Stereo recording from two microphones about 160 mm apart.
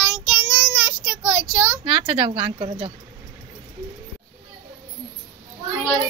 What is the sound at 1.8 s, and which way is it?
A woman's voice, 35° right (ahead or behind).